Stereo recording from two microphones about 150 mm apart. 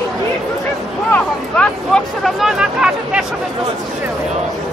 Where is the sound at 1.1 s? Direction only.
5° left (ahead or behind).